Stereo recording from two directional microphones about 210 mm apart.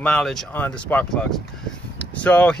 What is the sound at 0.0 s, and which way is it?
Speech, 5° left (ahead or behind).